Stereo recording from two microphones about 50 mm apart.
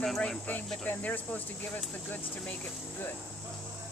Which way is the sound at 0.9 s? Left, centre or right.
Left.